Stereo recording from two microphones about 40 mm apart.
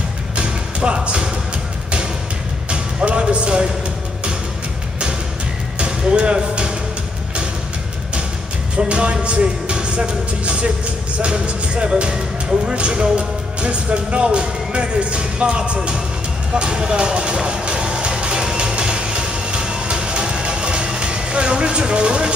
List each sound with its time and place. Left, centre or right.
0.4 s music: right
2.7 s music: right
5.8 s a sound: right
8.7 s speech: right
16.5 s music: right